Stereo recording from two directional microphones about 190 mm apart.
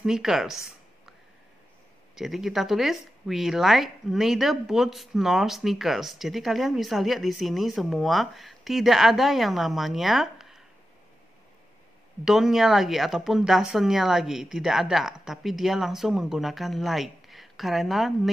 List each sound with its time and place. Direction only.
0.0 s a woman's voice: centre (ahead or behind)
2.1 s a woman's voice: centre (ahead or behind)
12.3 s a woman's voice: centre (ahead or behind)